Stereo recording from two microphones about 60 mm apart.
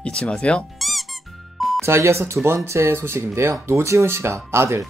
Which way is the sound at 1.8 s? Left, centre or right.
Right.